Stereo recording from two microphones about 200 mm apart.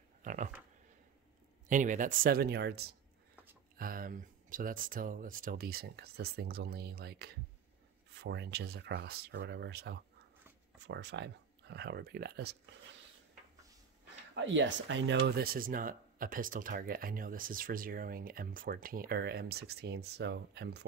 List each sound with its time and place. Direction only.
0.2 s a sound: 40° right (ahead or behind)
1.7 s speech: 40° right (ahead or behind)
14.3 s speech: 65° right (ahead or behind)